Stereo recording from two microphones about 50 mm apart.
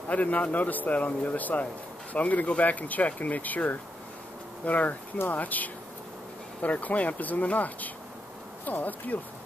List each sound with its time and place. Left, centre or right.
0.1 s speech: left